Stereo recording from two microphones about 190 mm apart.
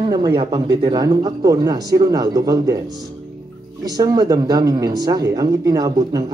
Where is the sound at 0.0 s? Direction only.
25° right (ahead or behind).